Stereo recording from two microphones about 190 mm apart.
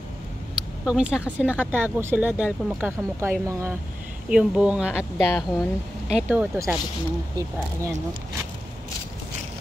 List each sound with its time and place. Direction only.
0.8 s speech: 5° right (ahead or behind)
5.1 s speech: 15° left (ahead or behind)
6.1 s speech: 5° right (ahead or behind)